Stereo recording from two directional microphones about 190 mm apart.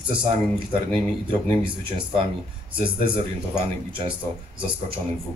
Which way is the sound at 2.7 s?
25° right (ahead or behind).